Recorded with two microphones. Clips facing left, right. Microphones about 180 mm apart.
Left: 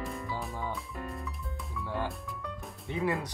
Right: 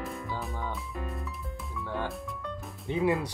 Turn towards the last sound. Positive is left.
turn(degrees=-20)  # may be behind; listen again after turning